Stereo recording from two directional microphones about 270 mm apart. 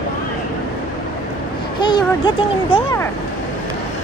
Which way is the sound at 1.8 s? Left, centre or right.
Centre.